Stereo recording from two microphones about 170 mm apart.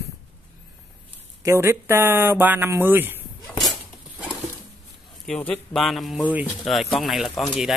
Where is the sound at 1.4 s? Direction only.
15° right (ahead or behind).